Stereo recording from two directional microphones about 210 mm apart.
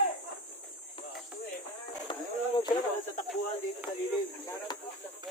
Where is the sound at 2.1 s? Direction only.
25° left (ahead or behind).